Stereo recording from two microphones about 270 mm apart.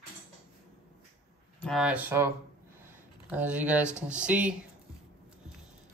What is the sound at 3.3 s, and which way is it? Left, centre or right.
Speech, centre.